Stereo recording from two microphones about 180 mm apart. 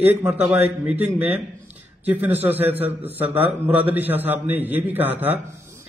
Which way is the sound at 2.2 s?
35° right (ahead or behind).